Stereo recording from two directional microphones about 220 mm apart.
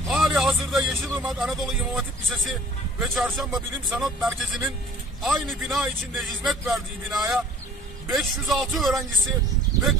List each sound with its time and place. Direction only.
0.1 s speech: centre (ahead or behind)